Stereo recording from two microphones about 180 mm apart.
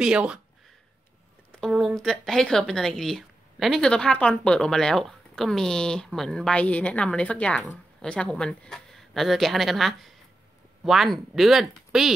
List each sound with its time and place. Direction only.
0.0 s a woman's voice: 5° right (ahead or behind)
1.5 s a woman's voice: centre (ahead or behind)